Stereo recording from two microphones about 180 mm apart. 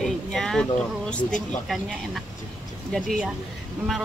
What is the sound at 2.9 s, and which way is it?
Speech, centre (ahead or behind).